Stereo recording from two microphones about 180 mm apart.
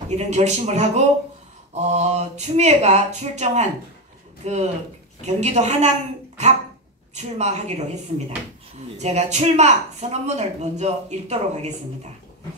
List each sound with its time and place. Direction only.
0.1 s speech: 40° right (ahead or behind)
8.9 s speech: 40° right (ahead or behind)